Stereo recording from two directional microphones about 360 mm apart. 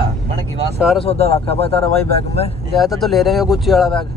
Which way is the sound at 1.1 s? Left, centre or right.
Centre.